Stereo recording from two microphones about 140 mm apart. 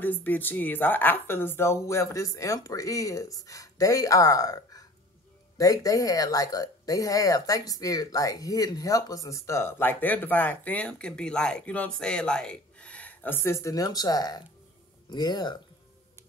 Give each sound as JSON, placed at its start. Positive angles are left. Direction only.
{"t": 0.0, "sound": "speech", "side_deg": 15}